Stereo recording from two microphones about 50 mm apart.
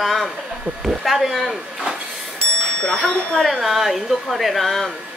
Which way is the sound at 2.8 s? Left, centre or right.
Centre.